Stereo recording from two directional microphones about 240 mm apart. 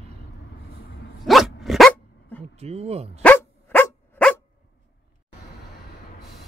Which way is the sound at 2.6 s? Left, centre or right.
Right.